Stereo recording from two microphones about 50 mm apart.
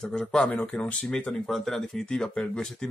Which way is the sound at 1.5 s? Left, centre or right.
Centre.